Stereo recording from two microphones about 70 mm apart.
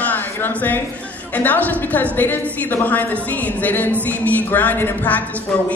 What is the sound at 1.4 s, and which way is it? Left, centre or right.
A woman's voice, left.